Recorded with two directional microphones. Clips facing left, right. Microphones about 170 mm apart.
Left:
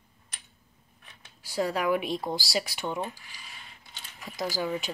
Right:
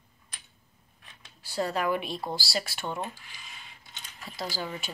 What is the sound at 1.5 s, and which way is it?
Speech, 10° left (ahead or behind).